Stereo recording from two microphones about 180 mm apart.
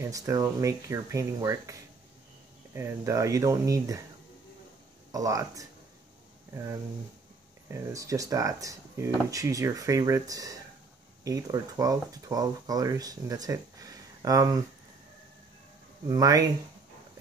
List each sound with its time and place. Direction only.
0.0 s speech: 20° right (ahead or behind)
5.1 s speech: 20° right (ahead or behind)
16.1 s speech: 20° right (ahead or behind)